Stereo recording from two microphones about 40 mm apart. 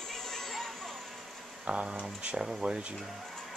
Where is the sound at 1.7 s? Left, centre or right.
Right.